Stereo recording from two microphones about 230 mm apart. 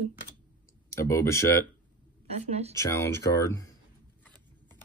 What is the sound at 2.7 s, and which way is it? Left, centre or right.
Speech, centre.